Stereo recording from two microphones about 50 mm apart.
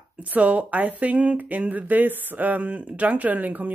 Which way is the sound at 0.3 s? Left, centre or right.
Right.